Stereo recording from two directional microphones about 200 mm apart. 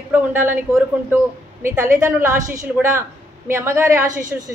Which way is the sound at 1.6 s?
10° right (ahead or behind).